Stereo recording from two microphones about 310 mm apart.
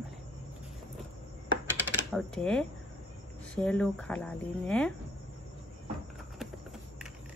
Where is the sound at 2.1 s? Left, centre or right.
Centre.